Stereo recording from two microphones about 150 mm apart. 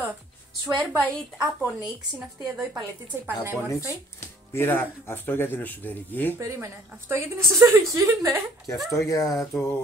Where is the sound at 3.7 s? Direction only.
20° left (ahead or behind).